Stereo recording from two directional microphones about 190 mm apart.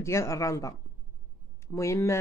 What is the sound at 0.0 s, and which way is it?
Speech, 15° left (ahead or behind).